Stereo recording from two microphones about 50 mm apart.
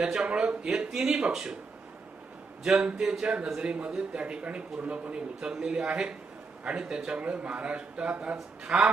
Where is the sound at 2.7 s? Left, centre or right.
Right.